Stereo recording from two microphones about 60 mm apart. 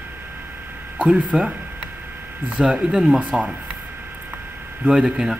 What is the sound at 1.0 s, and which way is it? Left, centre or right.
Speech, centre.